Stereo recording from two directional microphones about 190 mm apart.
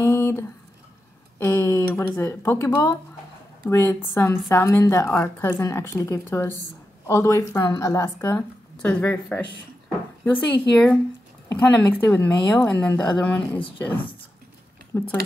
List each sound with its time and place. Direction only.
0.0 s a sound: 15° left (ahead or behind)
1.4 s a woman's voice: 15° left (ahead or behind)
11.4 s a woman's voice: 15° left (ahead or behind)
12.9 s a woman's voice: 20° left (ahead or behind)
13.2 s a woman's voice: 5° left (ahead or behind)